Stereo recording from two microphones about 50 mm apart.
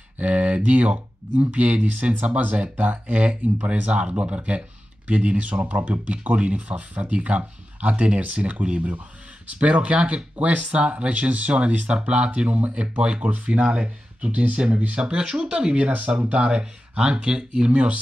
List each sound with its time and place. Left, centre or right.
0.2 s speech: right